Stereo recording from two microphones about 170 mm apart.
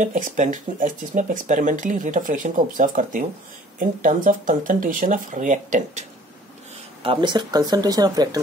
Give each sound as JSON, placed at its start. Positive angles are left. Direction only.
{"t": 0.0, "sound": "speech", "side_deg": -45}
{"t": 7.0, "sound": "speech", "side_deg": -30}